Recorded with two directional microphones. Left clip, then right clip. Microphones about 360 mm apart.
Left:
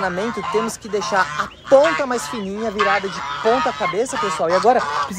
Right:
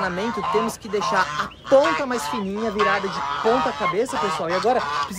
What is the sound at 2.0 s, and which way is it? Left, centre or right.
Speech, centre.